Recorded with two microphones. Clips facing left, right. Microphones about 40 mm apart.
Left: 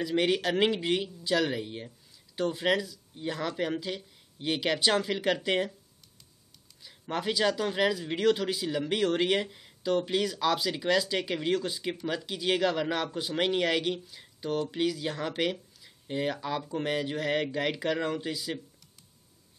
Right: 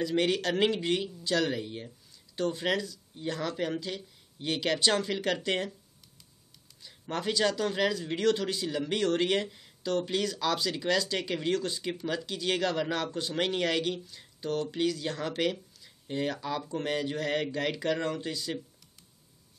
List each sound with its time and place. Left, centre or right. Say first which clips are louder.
0.0 s speech: left 1 dB; centre
6.8 s speech: left 1 dB; centre